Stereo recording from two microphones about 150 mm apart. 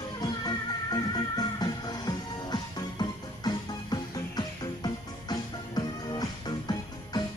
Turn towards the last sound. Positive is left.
turn(degrees=30)  # may be behind; listen again after turning